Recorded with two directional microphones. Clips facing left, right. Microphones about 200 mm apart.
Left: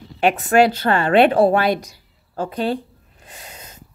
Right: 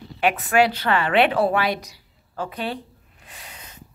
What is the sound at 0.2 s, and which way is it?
A woman's voice, 45° left (ahead or behind).